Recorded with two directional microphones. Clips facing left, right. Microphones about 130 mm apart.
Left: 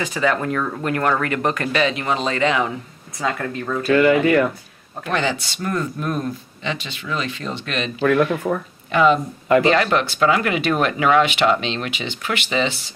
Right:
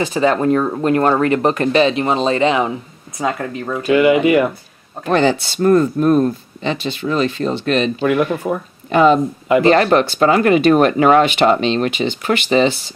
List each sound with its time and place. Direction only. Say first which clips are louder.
0.0 s speech: right 6 dB; 30° right (ahead or behind)
5.0 s speech: right 8 dB; 40° right (ahead or behind)
8.0 s speech: right 1 dB; 10° right (ahead or behind)
8.9 s speech: right 4 dB; 40° right (ahead or behind)